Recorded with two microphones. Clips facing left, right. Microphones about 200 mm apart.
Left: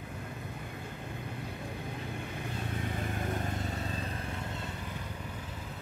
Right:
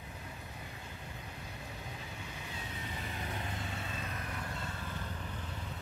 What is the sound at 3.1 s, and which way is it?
Vehicle, 50° left (ahead or behind).